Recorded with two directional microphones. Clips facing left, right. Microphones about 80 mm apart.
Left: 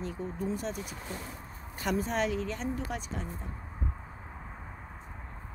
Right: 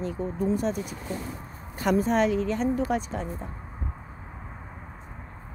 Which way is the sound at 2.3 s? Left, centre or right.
Right.